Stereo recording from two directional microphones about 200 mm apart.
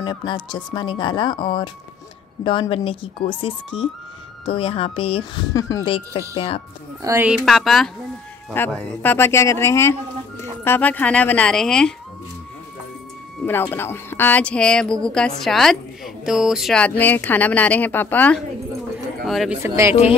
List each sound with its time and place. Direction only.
0.0 s speech: 20° left (ahead or behind)
5.5 s speech: 15° left (ahead or behind)
5.9 s speech: 25° left (ahead or behind)
7.0 s speech: 10° right (ahead or behind)
13.5 s speech: 10° left (ahead or behind)
19.6 s speech: 15° right (ahead or behind)